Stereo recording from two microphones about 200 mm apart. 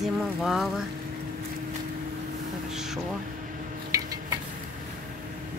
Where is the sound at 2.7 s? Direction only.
Centre (ahead or behind).